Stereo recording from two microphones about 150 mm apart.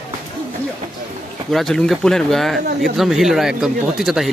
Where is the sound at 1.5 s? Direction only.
Centre (ahead or behind).